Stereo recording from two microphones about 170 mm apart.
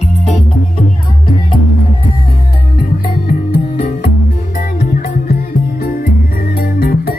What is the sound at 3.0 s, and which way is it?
Music, 60° left (ahead or behind).